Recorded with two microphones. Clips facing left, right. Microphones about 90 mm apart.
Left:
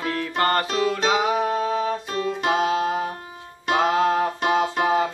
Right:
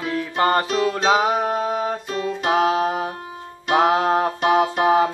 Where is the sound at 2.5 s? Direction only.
50° right (ahead or behind).